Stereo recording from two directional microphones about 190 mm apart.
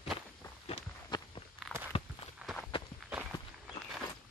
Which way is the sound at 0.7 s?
30° left (ahead or behind).